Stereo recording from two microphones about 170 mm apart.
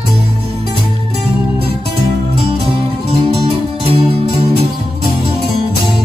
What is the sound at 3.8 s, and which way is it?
Music, 35° right (ahead or behind).